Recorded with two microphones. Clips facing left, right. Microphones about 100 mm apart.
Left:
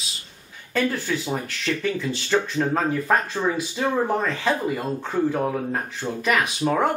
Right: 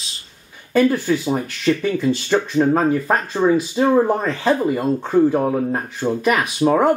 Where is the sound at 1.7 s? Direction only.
20° right (ahead or behind).